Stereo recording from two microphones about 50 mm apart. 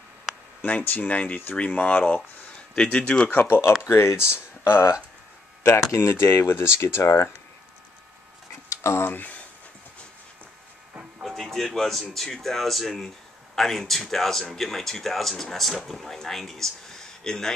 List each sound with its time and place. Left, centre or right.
0.6 s speech: left
2.7 s speech: left
3.4 s speech: left
3.8 s speech: left
5.6 s speech: left
6.1 s speech: left
8.6 s a sound: left
9.0 s speech: left
11.2 s speech: centre